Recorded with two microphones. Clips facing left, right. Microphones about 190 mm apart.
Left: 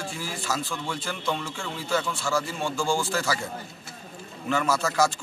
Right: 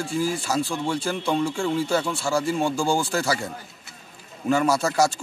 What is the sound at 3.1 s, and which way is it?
Speech, 40° right (ahead or behind).